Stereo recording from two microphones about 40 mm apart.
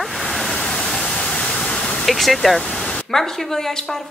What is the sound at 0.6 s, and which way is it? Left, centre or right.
Waterfall, centre.